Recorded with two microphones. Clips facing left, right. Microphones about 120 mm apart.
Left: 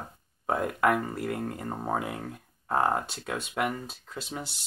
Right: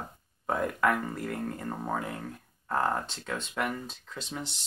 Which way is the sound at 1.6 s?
25° left (ahead or behind).